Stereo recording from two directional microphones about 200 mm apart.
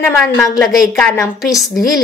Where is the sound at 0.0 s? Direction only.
Centre (ahead or behind).